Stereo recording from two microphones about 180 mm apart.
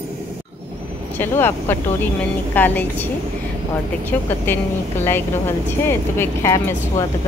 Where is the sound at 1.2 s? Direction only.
10° left (ahead or behind).